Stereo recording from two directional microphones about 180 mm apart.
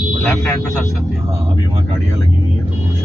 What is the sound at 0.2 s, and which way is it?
Speech, 15° left (ahead or behind).